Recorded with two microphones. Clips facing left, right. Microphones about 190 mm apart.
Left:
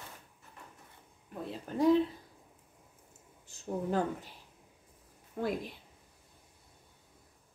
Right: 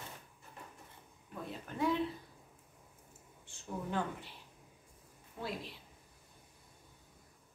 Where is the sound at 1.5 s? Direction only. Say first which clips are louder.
Left 8 dB; 35° left (ahead or behind).